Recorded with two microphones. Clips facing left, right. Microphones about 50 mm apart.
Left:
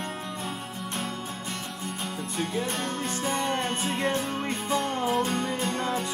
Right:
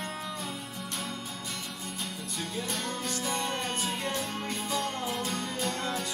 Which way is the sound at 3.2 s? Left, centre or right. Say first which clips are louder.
Left 6 dB; left.